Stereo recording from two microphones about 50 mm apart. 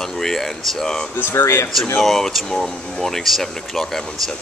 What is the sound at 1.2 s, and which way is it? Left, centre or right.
Speech, left.